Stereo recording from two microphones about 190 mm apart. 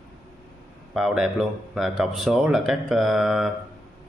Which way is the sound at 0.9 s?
Centre (ahead or behind).